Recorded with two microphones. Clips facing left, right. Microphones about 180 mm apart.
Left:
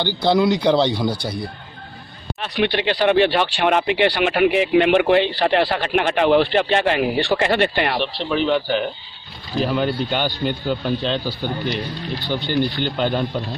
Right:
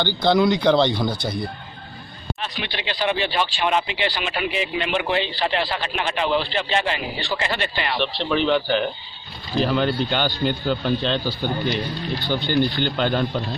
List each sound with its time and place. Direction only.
0.0 s speech: 10° left (ahead or behind)
2.4 s speech: 60° left (ahead or behind)
8.0 s speech: 5° left (ahead or behind)
12.8 s speech: 5° left (ahead or behind)